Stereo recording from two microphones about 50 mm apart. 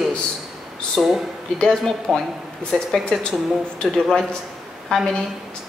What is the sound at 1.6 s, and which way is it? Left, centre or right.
Speech, centre.